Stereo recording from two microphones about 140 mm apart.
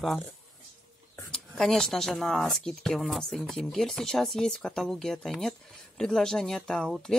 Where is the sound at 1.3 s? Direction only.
5° left (ahead or behind).